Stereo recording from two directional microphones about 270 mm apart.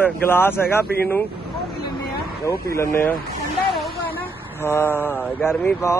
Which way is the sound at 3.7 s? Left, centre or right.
Centre.